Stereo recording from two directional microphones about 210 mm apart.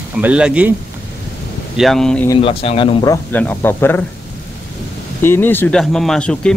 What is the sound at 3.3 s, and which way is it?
Speech, 10° left (ahead or behind).